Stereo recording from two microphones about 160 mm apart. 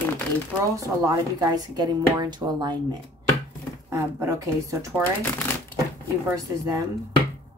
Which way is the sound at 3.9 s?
20° right (ahead or behind).